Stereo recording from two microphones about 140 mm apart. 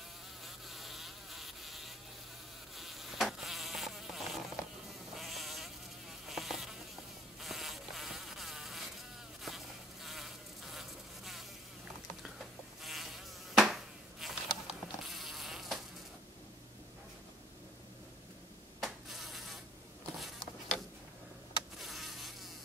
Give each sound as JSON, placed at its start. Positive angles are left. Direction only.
{"t": 0.5, "sound": "insect", "side_deg": 0}
{"t": 18.8, "sound": "insect", "side_deg": 0}
{"t": 20.2, "sound": "a sound", "side_deg": 0}
{"t": 21.7, "sound": "insect", "side_deg": 0}